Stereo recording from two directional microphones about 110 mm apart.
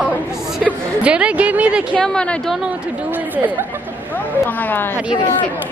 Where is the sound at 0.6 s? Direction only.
10° right (ahead or behind).